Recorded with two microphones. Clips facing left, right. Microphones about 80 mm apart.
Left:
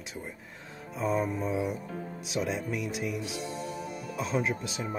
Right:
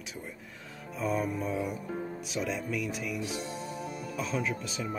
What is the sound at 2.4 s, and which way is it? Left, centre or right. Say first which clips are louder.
Speech: left 2 dB; left.